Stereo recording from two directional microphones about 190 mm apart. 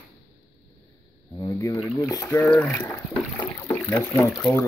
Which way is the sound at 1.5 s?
15° left (ahead or behind).